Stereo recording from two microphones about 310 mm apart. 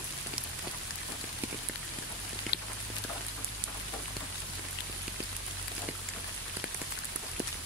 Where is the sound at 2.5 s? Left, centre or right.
Left.